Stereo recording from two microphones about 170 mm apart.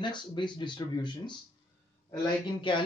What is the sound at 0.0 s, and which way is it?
Speech, 25° left (ahead or behind).